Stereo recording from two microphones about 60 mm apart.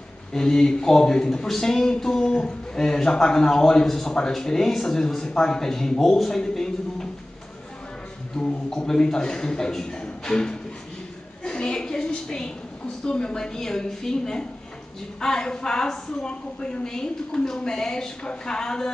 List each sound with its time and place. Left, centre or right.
0.3 s a man's voice: centre
8.4 s a man's voice: centre
11.4 s a sound: centre
13.0 s a man's voice: centre